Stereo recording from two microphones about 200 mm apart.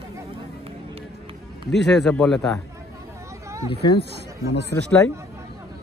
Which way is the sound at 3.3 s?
15° right (ahead or behind).